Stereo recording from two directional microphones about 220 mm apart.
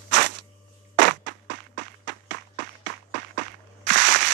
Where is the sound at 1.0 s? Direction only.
55° right (ahead or behind).